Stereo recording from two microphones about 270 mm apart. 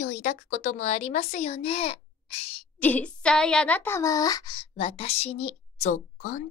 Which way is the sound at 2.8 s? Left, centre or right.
Centre.